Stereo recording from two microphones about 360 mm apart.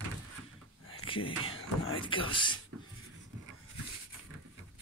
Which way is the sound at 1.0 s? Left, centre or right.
Centre.